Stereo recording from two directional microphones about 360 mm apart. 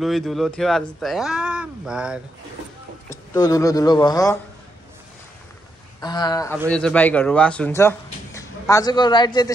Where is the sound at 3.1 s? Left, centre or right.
Centre.